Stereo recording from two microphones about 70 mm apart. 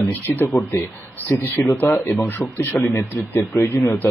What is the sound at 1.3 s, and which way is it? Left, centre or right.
Speech, left.